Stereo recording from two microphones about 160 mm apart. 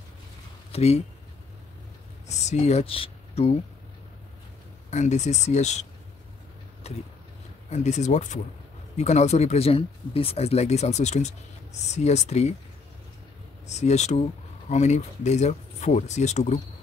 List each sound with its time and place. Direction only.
0.7 s speech: 40° left (ahead or behind)
2.2 s speech: 45° left (ahead or behind)
4.9 s speech: 45° left (ahead or behind)
6.8 s a sound: 40° left (ahead or behind)
7.7 s speech: 45° left (ahead or behind)
13.7 s speech: 45° left (ahead or behind)